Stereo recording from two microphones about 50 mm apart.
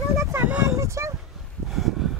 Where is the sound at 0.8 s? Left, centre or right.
Right.